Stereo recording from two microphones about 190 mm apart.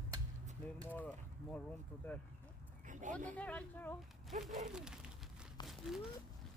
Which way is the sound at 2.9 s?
40° right (ahead or behind).